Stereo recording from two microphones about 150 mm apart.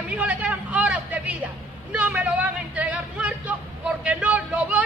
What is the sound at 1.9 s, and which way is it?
Music, 10° right (ahead or behind).